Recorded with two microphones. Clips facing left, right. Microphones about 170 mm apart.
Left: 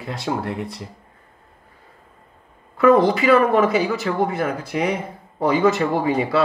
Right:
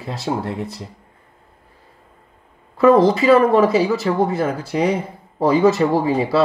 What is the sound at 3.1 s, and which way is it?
Speech, 30° right (ahead or behind).